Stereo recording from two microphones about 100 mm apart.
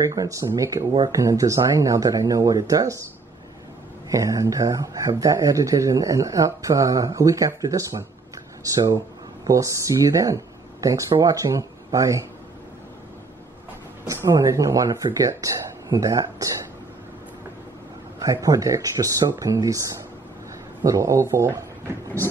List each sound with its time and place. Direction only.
0.0 s speech: 35° right (ahead or behind)
4.1 s speech: 35° right (ahead or behind)
14.0 s speech: 30° right (ahead or behind)
18.2 s speech: 35° right (ahead or behind)
20.8 s speech: 35° right (ahead or behind)